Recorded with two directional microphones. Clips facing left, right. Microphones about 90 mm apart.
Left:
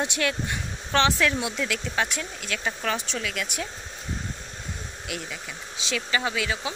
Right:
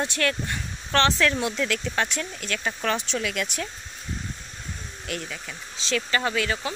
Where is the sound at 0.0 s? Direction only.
15° left (ahead or behind); by 3.4 s centre (ahead or behind).